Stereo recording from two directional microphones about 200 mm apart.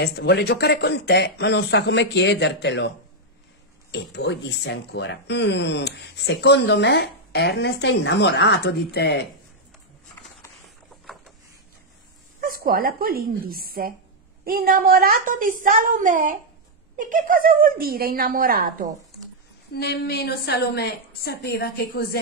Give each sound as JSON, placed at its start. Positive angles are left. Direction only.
{"t": 0.0, "sound": "speech", "side_deg": 55}
{"t": 3.9, "sound": "speech", "side_deg": 60}
{"t": 12.4, "sound": "a woman's voice", "side_deg": -45}
{"t": 19.7, "sound": "a woman's voice", "side_deg": 55}